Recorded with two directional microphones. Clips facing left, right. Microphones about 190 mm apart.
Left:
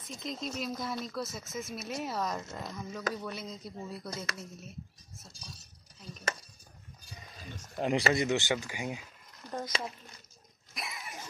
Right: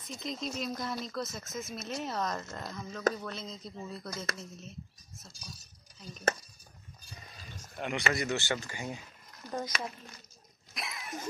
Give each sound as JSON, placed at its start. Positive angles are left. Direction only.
{"t": 0.1, "sound": "speech", "side_deg": 0}
{"t": 7.8, "sound": "speech", "side_deg": 35}
{"t": 9.7, "sound": "speech", "side_deg": 30}
{"t": 10.7, "sound": "a sound", "side_deg": 0}